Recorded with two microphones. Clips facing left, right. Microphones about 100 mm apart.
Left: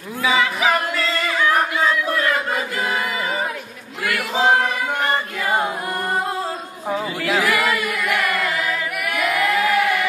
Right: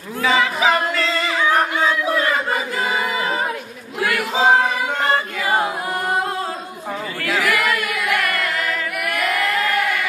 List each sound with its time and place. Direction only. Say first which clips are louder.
0.2 s a sound: right 1 dB; centre (ahead or behind)
0.9 s music: right 1 dB; centre (ahead or behind)
1.9 s battle cry: right 1 dB; 10° right (ahead or behind)
4.0 s choir: right 2 dB; 15° right (ahead or behind)
6.9 s chatter: left 3 dB; 15° left (ahead or behind)
7.4 s music: even; centre (ahead or behind)
9.1 s singing: left 2 dB; 10° left (ahead or behind)